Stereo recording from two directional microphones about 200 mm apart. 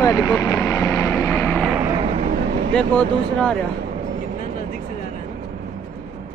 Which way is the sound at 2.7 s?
5° left (ahead or behind).